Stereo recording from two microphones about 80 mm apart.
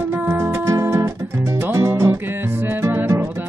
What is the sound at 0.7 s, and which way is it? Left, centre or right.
Music, right.